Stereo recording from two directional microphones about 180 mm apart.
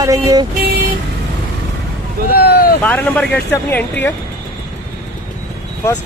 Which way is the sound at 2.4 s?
60° left (ahead or behind).